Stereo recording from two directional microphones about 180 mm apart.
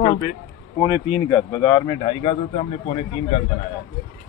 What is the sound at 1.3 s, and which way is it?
Speech, 10° left (ahead or behind).